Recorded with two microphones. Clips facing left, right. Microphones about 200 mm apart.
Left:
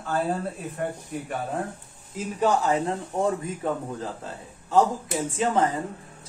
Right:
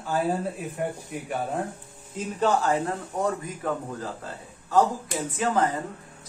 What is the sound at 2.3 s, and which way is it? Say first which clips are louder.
Speech: left 1 dB; 15° left (ahead or behind).